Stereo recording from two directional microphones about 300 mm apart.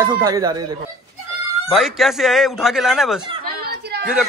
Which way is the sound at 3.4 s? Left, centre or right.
Right.